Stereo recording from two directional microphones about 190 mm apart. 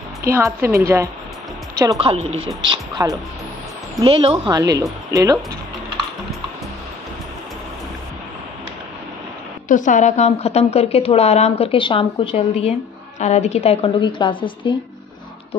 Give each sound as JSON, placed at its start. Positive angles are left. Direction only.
{"t": 0.3, "sound": "a woman's voice", "side_deg": -15}
{"t": 9.7, "sound": "a woman's voice", "side_deg": 40}